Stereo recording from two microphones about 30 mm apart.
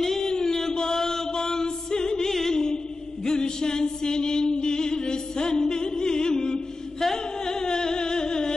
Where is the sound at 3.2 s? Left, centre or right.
Left.